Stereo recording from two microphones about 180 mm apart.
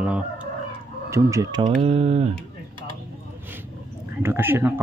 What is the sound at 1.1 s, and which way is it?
Speech, 20° right (ahead or behind).